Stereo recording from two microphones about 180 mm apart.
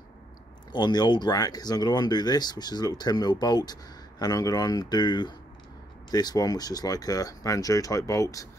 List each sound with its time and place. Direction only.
0.7 s speech: 25° left (ahead or behind)